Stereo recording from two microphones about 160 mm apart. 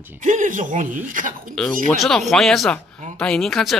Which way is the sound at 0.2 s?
55° right (ahead or behind).